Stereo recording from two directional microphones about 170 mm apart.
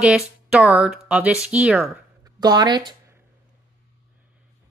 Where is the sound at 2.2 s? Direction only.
25° right (ahead or behind).